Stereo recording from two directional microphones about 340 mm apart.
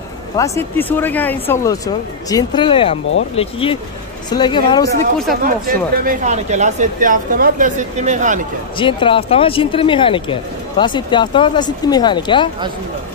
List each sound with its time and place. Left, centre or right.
0.4 s speech: centre
5.4 s speech: right
8.7 s speech: centre